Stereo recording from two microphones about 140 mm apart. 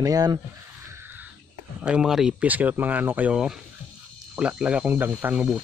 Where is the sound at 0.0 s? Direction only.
25° right (ahead or behind).